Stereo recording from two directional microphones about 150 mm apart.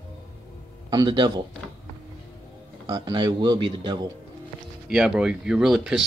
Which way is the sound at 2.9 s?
30° right (ahead or behind).